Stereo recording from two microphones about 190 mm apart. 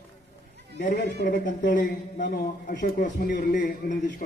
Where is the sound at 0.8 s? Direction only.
50° left (ahead or behind).